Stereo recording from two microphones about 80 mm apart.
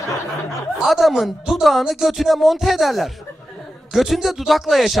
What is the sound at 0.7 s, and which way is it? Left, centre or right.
A woman's voice, centre.